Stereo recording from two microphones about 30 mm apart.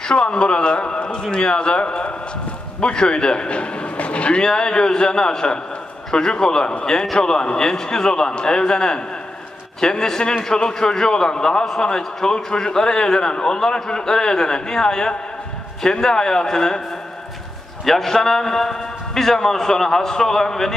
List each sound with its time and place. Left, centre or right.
0.1 s a man's voice: left
4.4 s a man's voice: left
17.8 s a man's voice: centre